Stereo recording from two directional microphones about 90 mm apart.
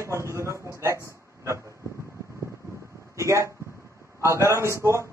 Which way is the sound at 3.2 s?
35° right (ahead or behind).